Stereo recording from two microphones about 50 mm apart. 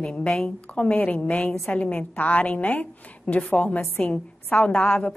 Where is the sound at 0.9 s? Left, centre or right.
Left.